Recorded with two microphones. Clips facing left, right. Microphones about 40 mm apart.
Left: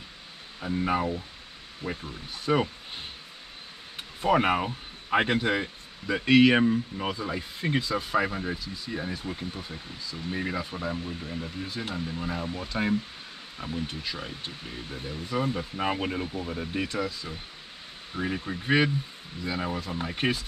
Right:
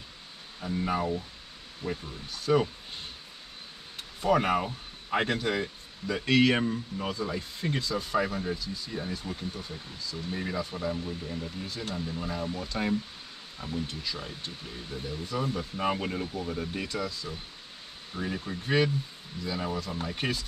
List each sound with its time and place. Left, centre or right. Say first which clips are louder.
0.6 s speech: left 3 dB; centre
4.2 s speech: left 2 dB; left